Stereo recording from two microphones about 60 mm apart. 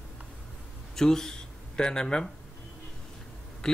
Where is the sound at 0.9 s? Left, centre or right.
Centre.